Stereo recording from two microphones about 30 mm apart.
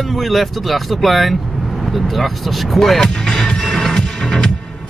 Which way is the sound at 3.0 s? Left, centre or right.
Left.